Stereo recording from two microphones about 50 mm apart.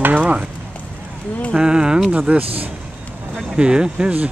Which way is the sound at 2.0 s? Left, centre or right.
Right.